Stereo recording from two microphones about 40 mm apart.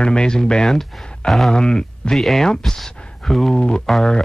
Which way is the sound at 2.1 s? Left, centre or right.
Centre.